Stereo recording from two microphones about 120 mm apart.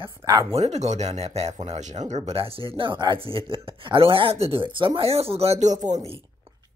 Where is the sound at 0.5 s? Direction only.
65° right (ahead or behind).